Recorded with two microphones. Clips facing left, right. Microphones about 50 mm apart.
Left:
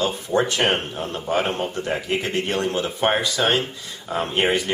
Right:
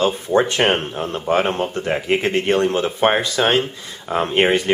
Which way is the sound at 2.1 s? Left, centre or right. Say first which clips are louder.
Right 9 dB; right.